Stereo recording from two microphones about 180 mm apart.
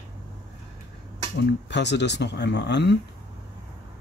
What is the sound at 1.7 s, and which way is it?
A man's voice, 75° left (ahead or behind).